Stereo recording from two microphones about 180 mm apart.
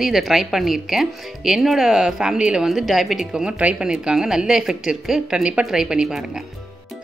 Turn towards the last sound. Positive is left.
turn(degrees=-5)  # may be behind; listen again after turning